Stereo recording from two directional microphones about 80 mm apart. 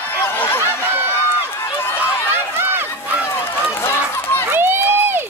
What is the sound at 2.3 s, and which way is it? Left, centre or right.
Run, right.